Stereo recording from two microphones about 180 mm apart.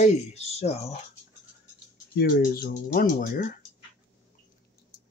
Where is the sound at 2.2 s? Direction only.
55° left (ahead or behind).